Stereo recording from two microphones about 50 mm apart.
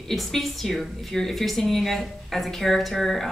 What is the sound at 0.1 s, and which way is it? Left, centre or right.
A woman's voice, centre.